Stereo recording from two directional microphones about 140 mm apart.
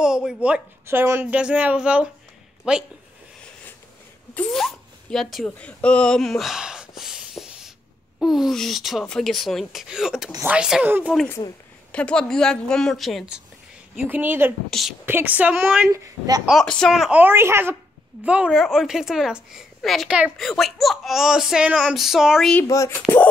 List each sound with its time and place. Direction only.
0.0 s speech: 5° right (ahead or behind)
4.4 s speech: 5° left (ahead or behind)
11.9 s speech: 5° left (ahead or behind)
13.9 s speech: 15° right (ahead or behind)
14.7 s speech: centre (ahead or behind)
15.0 s speech: 15° right (ahead or behind)
15.9 s speech: 25° right (ahead or behind)
16.4 s speech: 5° left (ahead or behind)
22.7 s speech: 20° left (ahead or behind)